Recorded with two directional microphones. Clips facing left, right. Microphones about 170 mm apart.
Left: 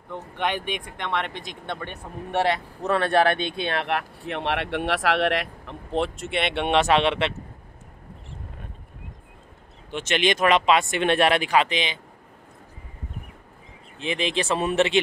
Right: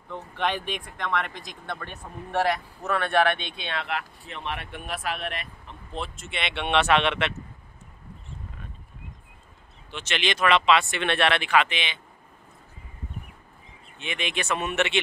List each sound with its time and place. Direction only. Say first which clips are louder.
0.1 s speech: left 1 dB; 15° left (ahead or behind); by 3.3 s 35° left (ahead or behind)
3.8 s speech: left 5 dB; 65° left (ahead or behind); by 7.3 s 30° left (ahead or behind)
9.8 s speech: left 6 dB; 45° left (ahead or behind)
13.9 s speech: left 6 dB; 35° left (ahead or behind)